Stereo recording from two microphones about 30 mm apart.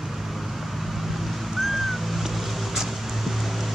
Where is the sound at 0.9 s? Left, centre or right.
Centre.